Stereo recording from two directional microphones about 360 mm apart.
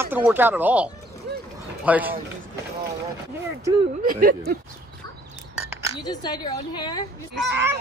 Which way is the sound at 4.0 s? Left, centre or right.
Right.